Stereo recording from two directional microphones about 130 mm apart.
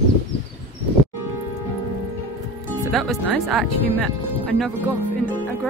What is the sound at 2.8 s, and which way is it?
Speech, centre (ahead or behind).